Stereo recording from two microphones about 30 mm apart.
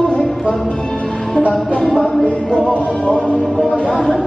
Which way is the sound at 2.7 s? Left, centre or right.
Left.